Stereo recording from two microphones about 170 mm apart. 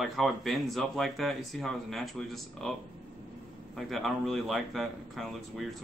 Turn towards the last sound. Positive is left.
turn(degrees=0)  # may be behind; listen again after turning